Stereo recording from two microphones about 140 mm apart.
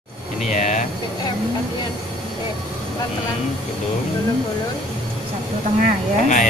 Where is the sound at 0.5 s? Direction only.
60° left (ahead or behind).